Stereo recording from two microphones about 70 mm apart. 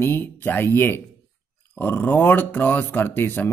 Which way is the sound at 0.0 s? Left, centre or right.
Left.